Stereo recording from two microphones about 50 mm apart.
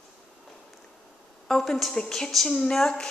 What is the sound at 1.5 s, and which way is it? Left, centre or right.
Speech, centre.